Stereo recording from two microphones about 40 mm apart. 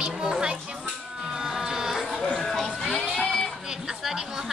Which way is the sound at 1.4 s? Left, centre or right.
Centre.